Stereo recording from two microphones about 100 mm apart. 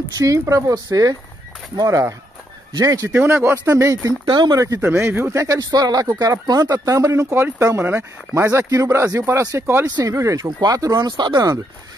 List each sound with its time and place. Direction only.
0.2 s speech: 35° right (ahead or behind)
3.1 s speech: 20° right (ahead or behind)
4.3 s speech: 50° right (ahead or behind)
4.6 s speech: 35° right (ahead or behind)
4.8 s speech: 25° right (ahead or behind)
9.9 s speech: 35° right (ahead or behind)